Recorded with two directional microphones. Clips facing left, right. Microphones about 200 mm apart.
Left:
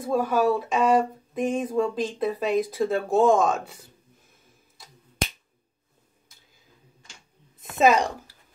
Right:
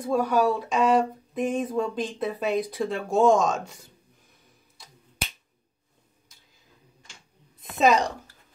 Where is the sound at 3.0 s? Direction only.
55° left (ahead or behind).